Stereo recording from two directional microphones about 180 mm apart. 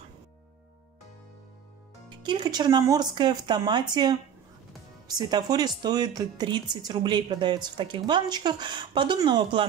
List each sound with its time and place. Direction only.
2.0 s speech: 25° right (ahead or behind)